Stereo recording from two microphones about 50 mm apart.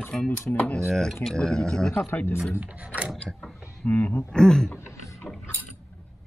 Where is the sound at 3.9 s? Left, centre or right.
Left.